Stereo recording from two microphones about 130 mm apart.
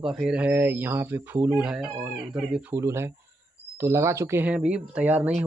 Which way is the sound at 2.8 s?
20° right (ahead or behind).